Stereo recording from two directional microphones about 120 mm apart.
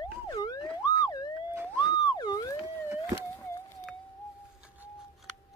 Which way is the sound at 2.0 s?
35° left (ahead or behind).